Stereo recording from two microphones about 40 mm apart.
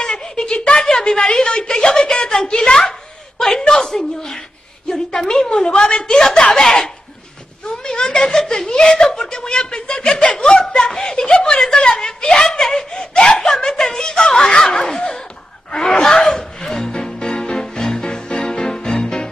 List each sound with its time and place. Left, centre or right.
0.0 s a sound: centre
1.3 s a woman's voice: centre
6.0 s a woman's voice: centre
12.4 s speech: centre
12.9 s a woman's voice: left
16.9 s music: centre